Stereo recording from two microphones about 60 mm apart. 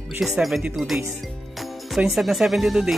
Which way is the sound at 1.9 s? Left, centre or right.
Centre.